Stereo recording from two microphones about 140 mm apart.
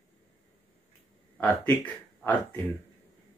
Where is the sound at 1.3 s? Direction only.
10° left (ahead or behind).